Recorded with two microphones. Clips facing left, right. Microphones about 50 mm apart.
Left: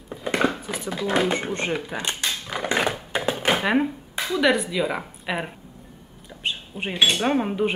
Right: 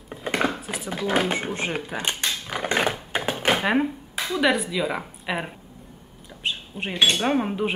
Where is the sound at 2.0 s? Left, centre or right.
Right.